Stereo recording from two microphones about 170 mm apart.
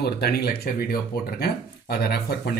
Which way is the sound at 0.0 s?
65° left (ahead or behind).